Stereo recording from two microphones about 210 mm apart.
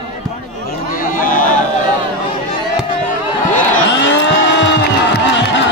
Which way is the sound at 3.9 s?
55° left (ahead or behind).